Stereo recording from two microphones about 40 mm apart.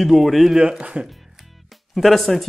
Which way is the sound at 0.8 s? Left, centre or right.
Right.